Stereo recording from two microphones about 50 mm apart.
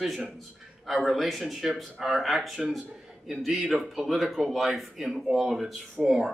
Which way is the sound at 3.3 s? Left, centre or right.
Centre.